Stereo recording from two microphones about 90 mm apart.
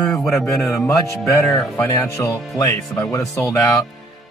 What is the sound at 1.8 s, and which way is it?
Speech, 30° left (ahead or behind).